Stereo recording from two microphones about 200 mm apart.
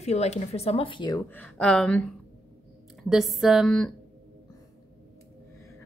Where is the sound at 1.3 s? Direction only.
5° left (ahead or behind).